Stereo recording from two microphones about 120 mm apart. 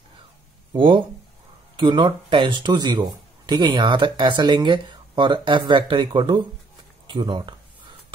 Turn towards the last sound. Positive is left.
turn(degrees=-40)  # may be behind; listen again after turning